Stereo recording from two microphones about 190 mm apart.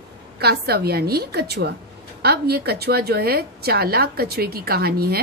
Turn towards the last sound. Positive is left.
turn(degrees=-55)  # may be behind; listen again after turning